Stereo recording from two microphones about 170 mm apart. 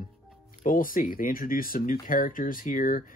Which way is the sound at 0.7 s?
55° left (ahead or behind).